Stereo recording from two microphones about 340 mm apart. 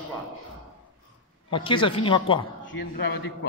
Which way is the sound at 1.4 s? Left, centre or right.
Centre.